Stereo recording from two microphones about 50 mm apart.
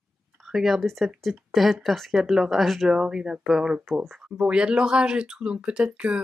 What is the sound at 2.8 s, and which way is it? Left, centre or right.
Speech, centre.